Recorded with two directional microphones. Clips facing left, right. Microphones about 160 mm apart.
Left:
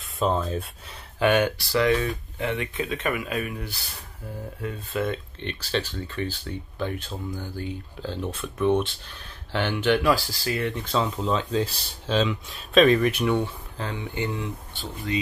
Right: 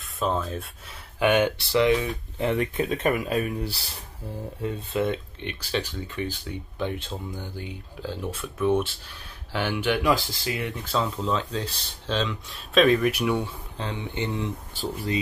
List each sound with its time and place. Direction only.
0.0 s speech: centre (ahead or behind)
1.2 s speech: 20° right (ahead or behind)
2.3 s speech: 35° right (ahead or behind)
4.6 s speech: 25° right (ahead or behind)
10.7 s speech: 5° right (ahead or behind)
13.7 s speech: 20° right (ahead or behind)